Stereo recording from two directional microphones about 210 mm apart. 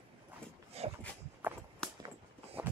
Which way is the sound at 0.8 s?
30° right (ahead or behind).